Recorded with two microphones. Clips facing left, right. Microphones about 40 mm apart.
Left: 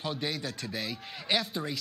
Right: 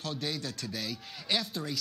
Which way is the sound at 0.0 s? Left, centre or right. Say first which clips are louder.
Left 2 dB; centre.